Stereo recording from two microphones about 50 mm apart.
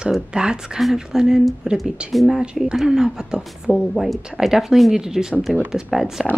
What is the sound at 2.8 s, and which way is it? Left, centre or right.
Speech, centre.